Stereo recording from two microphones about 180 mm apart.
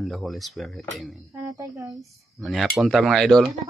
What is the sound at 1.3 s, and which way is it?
Speech, 20° right (ahead or behind).